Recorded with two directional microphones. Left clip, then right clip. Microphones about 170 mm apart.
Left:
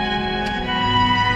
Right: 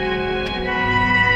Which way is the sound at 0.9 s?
40° right (ahead or behind).